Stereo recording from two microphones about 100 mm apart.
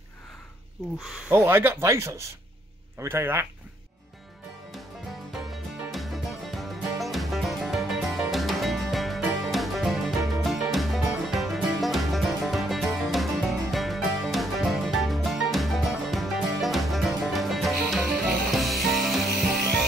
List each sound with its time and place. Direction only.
1.3 s speech: 20° right (ahead or behind)
5.3 s music: centre (ahead or behind)